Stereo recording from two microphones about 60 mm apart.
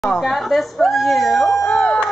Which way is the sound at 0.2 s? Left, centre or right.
Centre.